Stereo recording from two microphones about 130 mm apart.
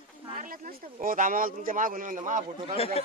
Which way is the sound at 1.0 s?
90° right.